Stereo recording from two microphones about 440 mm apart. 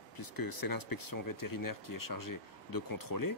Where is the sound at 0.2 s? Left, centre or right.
Left.